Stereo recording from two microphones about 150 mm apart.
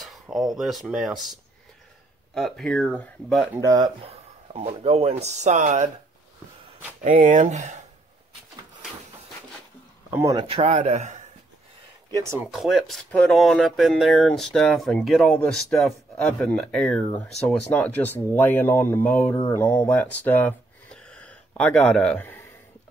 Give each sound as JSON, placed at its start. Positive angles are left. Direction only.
{"t": 0.0, "sound": "speech", "side_deg": 0}
{"t": 2.3, "sound": "speech", "side_deg": 0}
{"t": 3.5, "sound": "speech", "side_deg": -25}
{"t": 4.0, "sound": "speech", "side_deg": -40}
{"t": 7.0, "sound": "speech", "side_deg": -60}
{"t": 10.3, "sound": "speech", "side_deg": -35}
{"t": 12.1, "sound": "speech", "side_deg": -20}
{"t": 12.4, "sound": "speech", "side_deg": 0}